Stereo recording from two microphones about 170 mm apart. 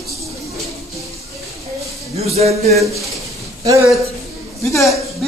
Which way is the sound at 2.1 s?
35° right (ahead or behind).